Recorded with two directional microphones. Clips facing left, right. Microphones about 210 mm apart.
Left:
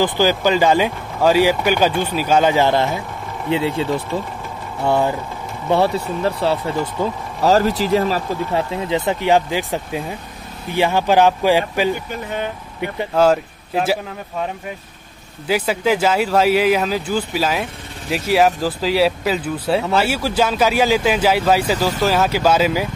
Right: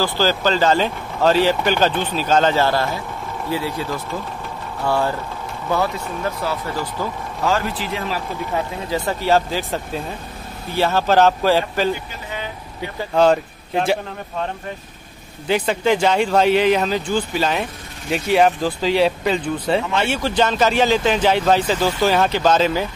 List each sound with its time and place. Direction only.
0.0 s speech: 15° left (ahead or behind)
7.4 s speech: 40° left (ahead or behind)
8.5 s speech: 20° left (ahead or behind)
13.1 s speech: 5° left (ahead or behind)
15.4 s speech: 5° left (ahead or behind)